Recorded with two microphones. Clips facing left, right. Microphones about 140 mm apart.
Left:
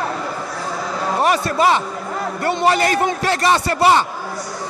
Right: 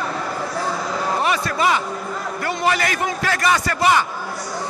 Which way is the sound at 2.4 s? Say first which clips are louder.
Left 4 dB; 30° left (ahead or behind).